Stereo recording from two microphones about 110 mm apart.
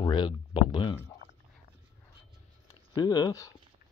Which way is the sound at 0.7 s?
45° left (ahead or behind).